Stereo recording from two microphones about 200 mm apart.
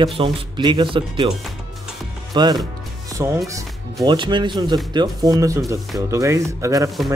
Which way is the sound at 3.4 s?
20° right (ahead or behind).